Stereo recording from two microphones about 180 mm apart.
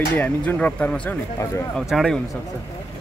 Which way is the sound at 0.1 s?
10° left (ahead or behind).